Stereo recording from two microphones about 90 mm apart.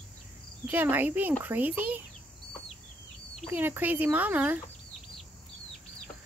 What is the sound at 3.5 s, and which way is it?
Speech, 20° right (ahead or behind).